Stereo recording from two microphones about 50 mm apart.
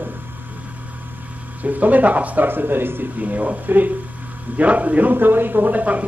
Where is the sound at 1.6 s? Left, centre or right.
Right.